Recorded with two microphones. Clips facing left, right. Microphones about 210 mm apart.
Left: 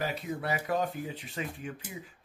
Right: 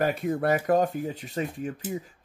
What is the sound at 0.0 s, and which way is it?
Speech, 50° right (ahead or behind).